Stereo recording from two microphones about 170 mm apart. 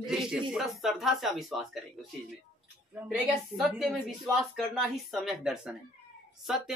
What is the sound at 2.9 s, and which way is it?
Speech, 5° right (ahead or behind).